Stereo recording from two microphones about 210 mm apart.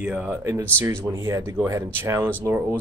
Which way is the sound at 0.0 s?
5° right (ahead or behind).